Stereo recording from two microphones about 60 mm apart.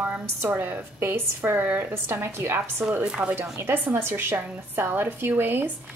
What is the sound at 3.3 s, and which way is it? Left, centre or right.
Speech, right.